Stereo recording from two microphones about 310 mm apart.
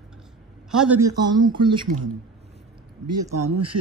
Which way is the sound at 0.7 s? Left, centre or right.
Centre.